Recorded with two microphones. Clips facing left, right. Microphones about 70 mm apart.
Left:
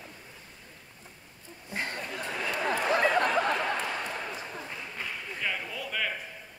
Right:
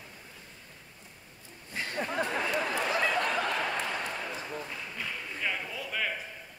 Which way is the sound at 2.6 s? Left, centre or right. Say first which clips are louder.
Left 3 dB; left.